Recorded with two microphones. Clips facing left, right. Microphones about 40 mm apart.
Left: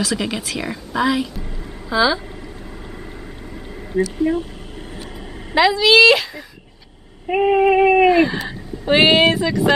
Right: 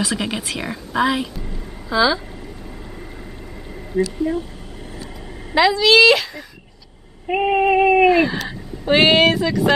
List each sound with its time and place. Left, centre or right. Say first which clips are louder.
0.0 s speech: left 1 dB; centre
1.9 s speech: even; centre
2.9 s a sound: left 1 dB; centre
4.2 s speech: left 3 dB; left
5.5 s speech: even; centre